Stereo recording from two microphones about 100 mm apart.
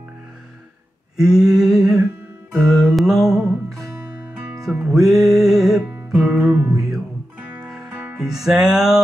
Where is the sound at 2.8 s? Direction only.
5° right (ahead or behind).